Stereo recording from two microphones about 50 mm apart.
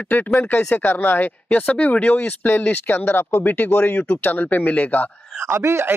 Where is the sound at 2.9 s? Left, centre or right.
Left.